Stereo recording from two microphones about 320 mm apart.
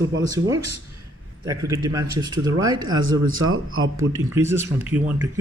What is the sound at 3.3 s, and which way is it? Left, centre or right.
Speech, right.